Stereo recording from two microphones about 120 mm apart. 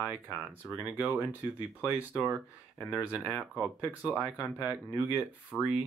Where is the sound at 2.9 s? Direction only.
10° right (ahead or behind).